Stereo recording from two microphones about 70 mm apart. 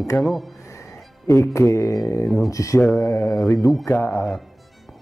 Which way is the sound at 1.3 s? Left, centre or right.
Left.